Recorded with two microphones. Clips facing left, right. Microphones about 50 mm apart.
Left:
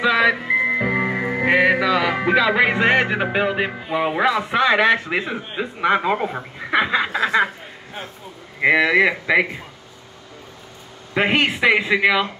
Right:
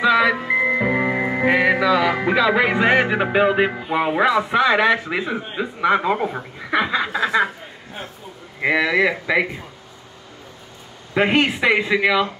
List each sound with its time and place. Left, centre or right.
0.0 s music: centre
1.5 s music: centre
4.0 s speech: centre
8.5 s speech: centre
11.1 s speech: centre